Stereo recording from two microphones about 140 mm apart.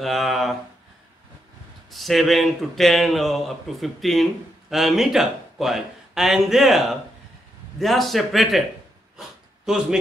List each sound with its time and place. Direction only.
0.0 s a man's voice: centre (ahead or behind)
1.9 s a man's voice: centre (ahead or behind)
9.7 s a man's voice: 5° right (ahead or behind)